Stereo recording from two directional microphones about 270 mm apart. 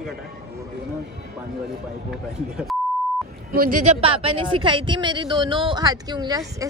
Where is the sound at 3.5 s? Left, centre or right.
Right.